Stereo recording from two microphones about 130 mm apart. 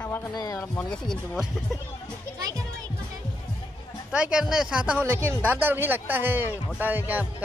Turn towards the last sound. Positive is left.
turn(degrees=-15)  # may be behind; listen again after turning